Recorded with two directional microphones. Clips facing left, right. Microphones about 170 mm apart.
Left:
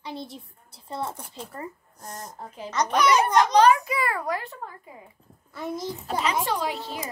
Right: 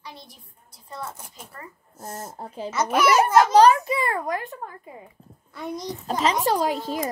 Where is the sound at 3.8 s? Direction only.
25° right (ahead or behind).